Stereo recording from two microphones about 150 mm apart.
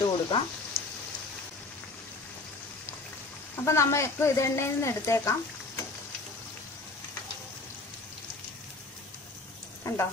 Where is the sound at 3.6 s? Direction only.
20° left (ahead or behind).